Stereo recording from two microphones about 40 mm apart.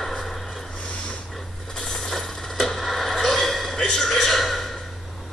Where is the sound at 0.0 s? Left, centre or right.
Centre.